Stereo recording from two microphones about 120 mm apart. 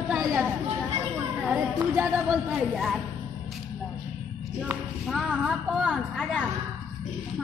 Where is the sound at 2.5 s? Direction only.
Centre (ahead or behind).